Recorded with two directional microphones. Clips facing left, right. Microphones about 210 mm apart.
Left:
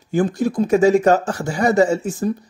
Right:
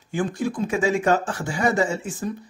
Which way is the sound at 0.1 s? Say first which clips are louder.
Left 6 dB; 40° left (ahead or behind).